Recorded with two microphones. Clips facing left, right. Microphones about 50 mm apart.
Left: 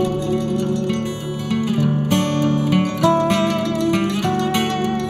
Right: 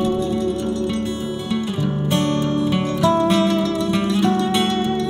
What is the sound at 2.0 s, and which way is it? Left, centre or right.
Music, left.